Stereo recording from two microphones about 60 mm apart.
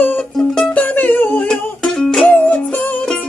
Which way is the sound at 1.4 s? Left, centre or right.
Centre.